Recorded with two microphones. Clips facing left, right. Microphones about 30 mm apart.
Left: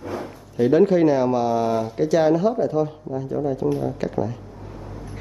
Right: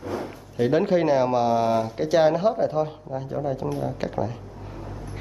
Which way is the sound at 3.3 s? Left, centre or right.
Centre.